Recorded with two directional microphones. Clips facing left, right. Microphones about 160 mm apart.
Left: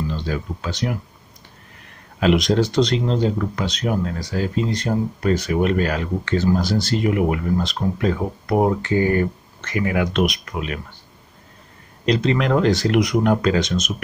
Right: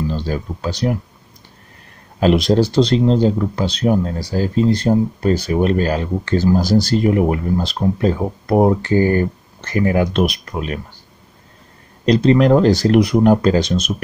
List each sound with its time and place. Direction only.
0.1 s speech: 35° right (ahead or behind)
2.1 s speech: 35° right (ahead or behind)
12.1 s speech: 35° right (ahead or behind)